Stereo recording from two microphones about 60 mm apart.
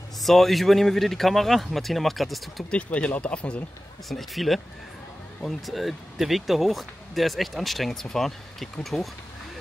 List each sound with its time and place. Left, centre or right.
0.2 s speech: centre
2.7 s speech: left
4.1 s speech: centre
5.7 s speech: centre